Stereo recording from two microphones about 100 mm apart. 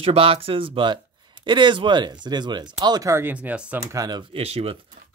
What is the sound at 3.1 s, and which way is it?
Speech, 25° right (ahead or behind).